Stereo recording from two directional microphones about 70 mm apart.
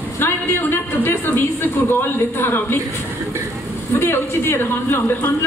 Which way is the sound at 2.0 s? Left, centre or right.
Left.